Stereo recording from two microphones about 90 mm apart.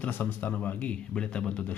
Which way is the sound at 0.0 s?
20° left (ahead or behind).